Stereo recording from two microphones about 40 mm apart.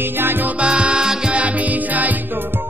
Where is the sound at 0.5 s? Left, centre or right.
Right.